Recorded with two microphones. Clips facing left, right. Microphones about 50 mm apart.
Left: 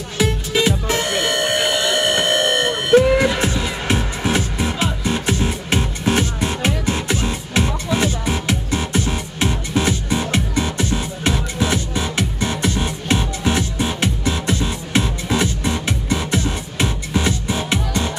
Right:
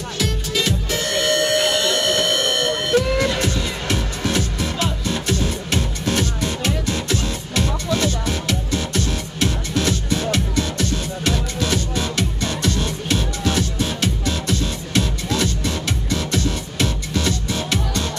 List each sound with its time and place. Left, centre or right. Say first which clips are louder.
0.2 s music: left 5 dB; left